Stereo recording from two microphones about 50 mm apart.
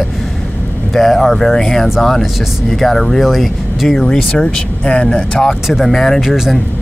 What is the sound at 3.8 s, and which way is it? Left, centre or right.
Speech, centre.